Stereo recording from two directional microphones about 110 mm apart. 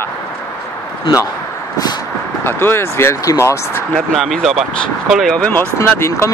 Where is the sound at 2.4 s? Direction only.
20° left (ahead or behind).